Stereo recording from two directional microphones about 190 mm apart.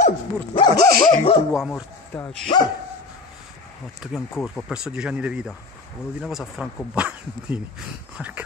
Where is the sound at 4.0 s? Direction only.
Centre (ahead or behind).